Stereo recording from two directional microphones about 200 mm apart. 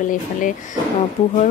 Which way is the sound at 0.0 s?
40° left (ahead or behind).